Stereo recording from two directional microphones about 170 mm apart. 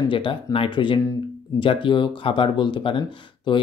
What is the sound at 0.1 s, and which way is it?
Speech, 30° left (ahead or behind).